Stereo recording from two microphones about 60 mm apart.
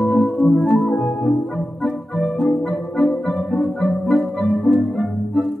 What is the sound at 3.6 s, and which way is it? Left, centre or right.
Music, centre.